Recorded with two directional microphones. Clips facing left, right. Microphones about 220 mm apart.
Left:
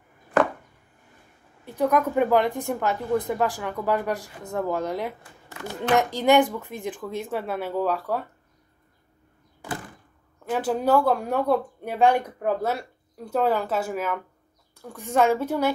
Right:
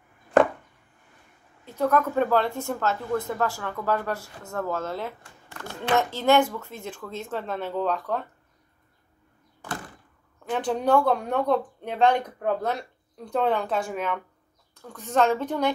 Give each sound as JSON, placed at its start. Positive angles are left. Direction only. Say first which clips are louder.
{"t": 1.7, "sound": "speech", "louder": "left 1 dB", "side_deg": 15}
{"t": 10.5, "sound": "speech", "louder": "left 1 dB", "side_deg": 5}